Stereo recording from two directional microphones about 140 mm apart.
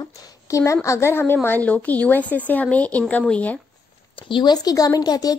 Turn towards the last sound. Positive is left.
turn(degrees=30)  # may be behind; listen again after turning